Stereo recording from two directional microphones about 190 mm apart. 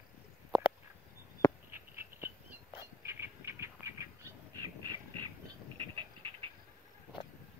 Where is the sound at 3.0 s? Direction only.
15° right (ahead or behind).